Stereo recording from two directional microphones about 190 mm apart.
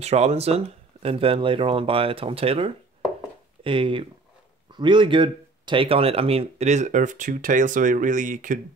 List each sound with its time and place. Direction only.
0.0 s speech: 35° right (ahead or behind)